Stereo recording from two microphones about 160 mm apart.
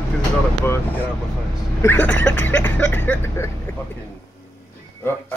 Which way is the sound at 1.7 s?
10° left (ahead or behind).